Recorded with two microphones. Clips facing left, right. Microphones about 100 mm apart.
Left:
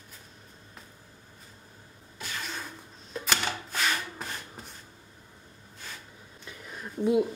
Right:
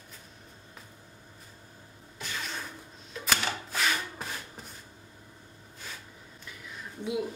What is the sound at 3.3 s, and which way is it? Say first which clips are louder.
Wood: even; centre (ahead or behind).